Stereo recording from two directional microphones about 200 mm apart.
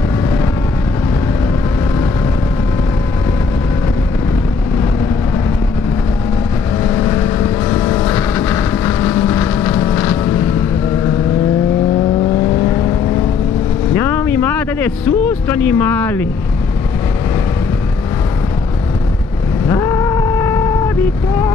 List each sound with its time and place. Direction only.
8.0 s boat: 10° left (ahead or behind)
9.8 s vehicle: 10° left (ahead or behind)
13.9 s vehicle: 10° left (ahead or behind)
19.7 s vehicle: 15° left (ahead or behind)